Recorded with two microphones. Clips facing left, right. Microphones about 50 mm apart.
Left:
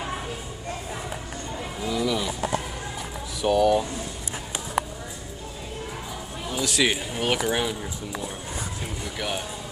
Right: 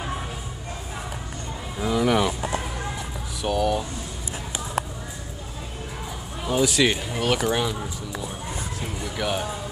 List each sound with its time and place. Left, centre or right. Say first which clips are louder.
1.8 s a sound: right 5 dB; right
3.4 s speech: left 4 dB; centre
6.6 s speech: right 2 dB; centre
9.0 s speech: right 4 dB; centre